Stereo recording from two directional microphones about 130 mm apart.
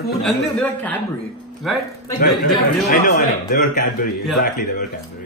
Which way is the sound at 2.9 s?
90° left.